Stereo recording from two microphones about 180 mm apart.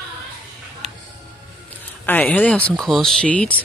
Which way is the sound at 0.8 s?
35° right (ahead or behind).